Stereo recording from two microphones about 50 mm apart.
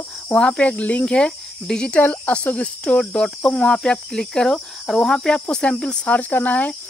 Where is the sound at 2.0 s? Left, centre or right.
Left.